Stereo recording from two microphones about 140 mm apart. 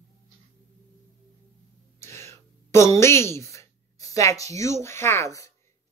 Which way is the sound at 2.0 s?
20° left (ahead or behind).